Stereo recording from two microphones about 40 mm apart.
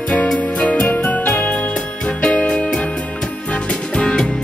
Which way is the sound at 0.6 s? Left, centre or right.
Left.